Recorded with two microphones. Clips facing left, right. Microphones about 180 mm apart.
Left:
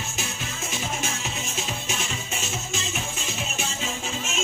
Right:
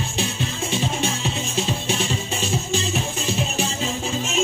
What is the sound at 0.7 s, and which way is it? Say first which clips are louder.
Music: right 6 dB; 30° right (ahead or behind).